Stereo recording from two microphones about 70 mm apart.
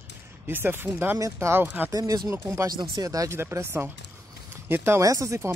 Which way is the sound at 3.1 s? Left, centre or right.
Right.